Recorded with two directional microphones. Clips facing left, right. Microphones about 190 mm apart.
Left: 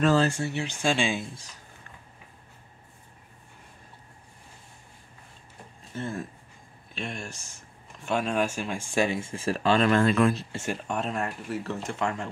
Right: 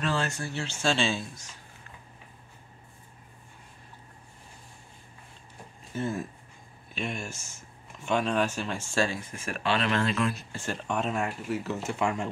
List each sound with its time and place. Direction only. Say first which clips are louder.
0.0 s speech: left 8 dB; 40° left (ahead or behind)
0.3 s speech: left 4 dB; 20° left (ahead or behind)
1.2 s speech: left 2 dB; 30° left (ahead or behind)
5.9 s speech: right 2 dB; 5° right (ahead or behind); by 10.3 s 50° left (ahead or behind)
10.3 s speech: left 3 dB; 20° left (ahead or behind)
10.8 s speech: right 3 dB; centre (ahead or behind)